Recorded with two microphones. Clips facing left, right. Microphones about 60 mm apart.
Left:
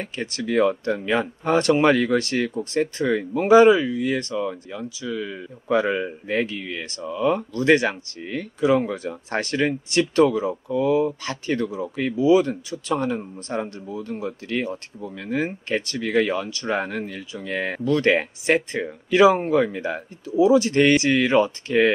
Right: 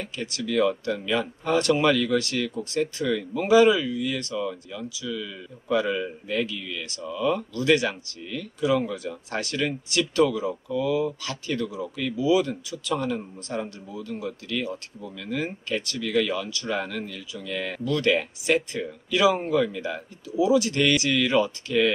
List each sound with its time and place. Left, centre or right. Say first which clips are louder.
0.0 s speech: left 3 dB; left